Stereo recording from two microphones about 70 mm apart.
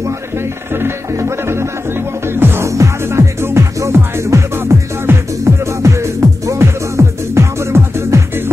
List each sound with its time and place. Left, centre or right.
0.7 s music: right
2.7 s music: right